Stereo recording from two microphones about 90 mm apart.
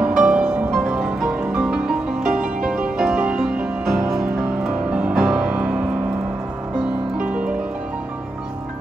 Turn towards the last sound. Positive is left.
turn(degrees=-15)  # may be behind; listen again after turning